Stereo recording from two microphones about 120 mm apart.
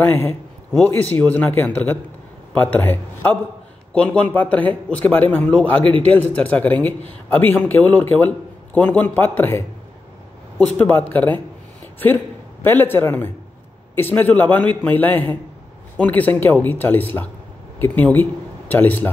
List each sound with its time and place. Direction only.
0.0 s a man's voice: 15° left (ahead or behind)
10.8 s a man's voice: 15° left (ahead or behind)
12.6 s a man's voice: 20° left (ahead or behind)